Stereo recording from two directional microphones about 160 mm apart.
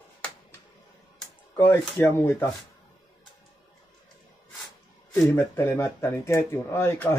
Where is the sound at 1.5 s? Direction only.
15° left (ahead or behind).